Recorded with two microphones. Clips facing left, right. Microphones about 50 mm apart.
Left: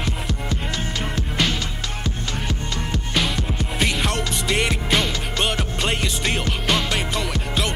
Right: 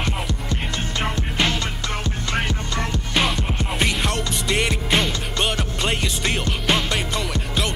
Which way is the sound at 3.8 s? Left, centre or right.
Centre.